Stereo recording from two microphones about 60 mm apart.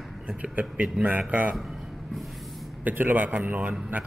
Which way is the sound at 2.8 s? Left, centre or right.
Right.